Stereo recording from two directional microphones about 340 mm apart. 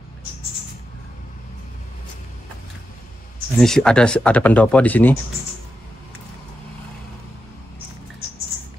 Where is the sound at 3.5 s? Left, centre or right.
Centre.